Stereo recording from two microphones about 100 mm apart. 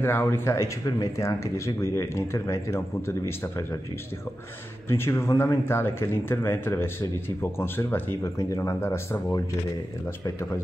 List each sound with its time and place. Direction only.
0.0 s speech: 25° left (ahead or behind)
4.8 s speech: 25° left (ahead or behind)
8.4 s speech: 30° left (ahead or behind)